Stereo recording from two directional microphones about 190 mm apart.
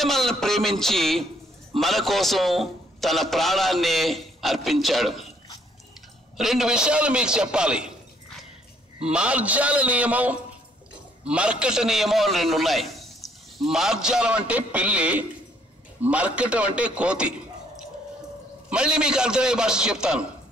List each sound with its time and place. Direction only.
0.0 s a man's voice: centre (ahead or behind)
6.3 s a man's voice: centre (ahead or behind)
9.1 s a man's voice: 5° right (ahead or behind)